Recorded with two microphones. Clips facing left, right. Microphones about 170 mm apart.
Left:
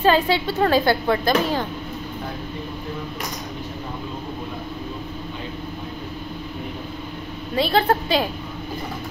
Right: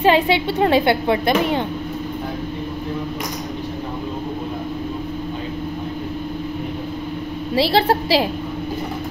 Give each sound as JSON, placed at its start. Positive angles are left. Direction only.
{"t": 0.0, "sound": "a woman's voice", "side_deg": -25}
{"t": 7.7, "sound": "a woman's voice", "side_deg": -30}